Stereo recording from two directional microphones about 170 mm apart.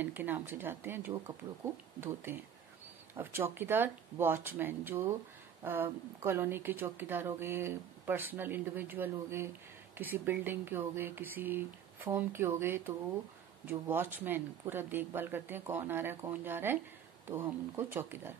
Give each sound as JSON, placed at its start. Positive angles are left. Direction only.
{"t": 0.0, "sound": "speech", "side_deg": -10}